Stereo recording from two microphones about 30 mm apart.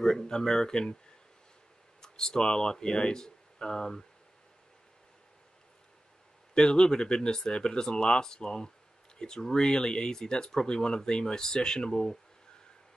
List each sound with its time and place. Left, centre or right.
0.0 s speech: left
2.0 s speech: left
6.5 s speech: left